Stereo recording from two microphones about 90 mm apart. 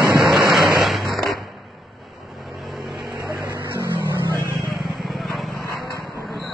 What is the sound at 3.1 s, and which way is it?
Vehicle, 35° right (ahead or behind).